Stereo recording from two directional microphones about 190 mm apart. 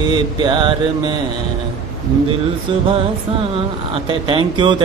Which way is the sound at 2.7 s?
25° right (ahead or behind).